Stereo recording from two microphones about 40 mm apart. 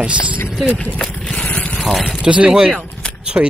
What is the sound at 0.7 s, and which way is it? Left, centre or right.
Speech, left.